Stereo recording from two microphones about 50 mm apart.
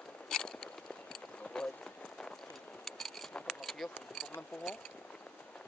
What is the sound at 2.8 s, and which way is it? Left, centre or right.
Vehicle, centre.